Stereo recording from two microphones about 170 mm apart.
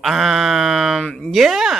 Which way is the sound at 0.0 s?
Centre (ahead or behind).